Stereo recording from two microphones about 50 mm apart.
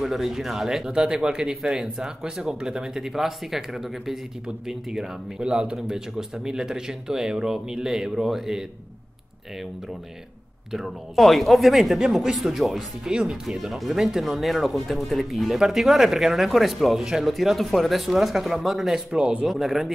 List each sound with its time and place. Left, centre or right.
0.0 s speech: centre
5.4 s speech: centre
10.7 s speech: centre
19.1 s speech: right
19.4 s speech: centre